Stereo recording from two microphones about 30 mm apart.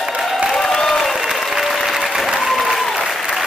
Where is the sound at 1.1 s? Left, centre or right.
Centre.